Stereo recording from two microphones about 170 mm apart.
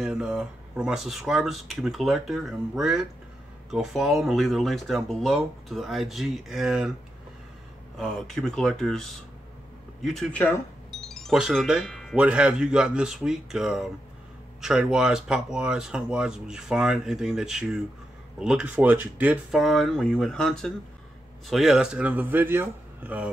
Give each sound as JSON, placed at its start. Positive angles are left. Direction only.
{"t": 0.0, "sound": "speech", "side_deg": -5}
{"t": 8.0, "sound": "a man's voice", "side_deg": 0}